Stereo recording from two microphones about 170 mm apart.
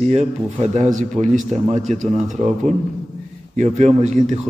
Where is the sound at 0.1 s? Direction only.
40° right (ahead or behind).